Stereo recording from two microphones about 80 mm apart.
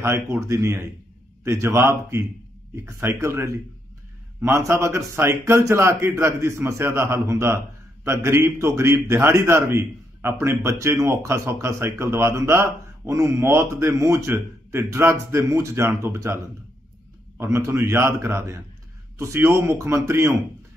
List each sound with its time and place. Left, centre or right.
0.0 s a man's voice: right
17.4 s a man's voice: right